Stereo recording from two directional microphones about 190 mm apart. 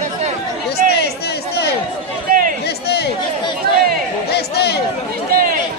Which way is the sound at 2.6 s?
60° left (ahead or behind).